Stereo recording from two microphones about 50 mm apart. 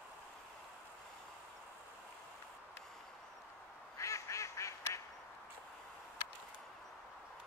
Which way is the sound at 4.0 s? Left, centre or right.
Left.